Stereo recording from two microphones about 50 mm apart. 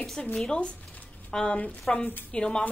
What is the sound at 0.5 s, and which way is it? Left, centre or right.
A woman's voice, left.